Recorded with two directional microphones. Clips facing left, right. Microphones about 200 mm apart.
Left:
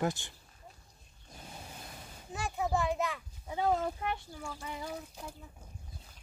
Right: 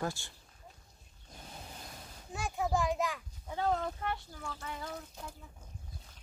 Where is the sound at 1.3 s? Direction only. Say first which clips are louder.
Left 1 dB; 5° left (ahead or behind).